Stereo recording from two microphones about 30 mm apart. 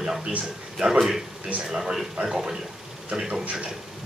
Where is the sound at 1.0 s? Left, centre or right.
Centre.